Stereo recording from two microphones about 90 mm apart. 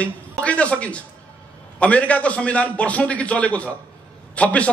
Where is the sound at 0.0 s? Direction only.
15° left (ahead or behind).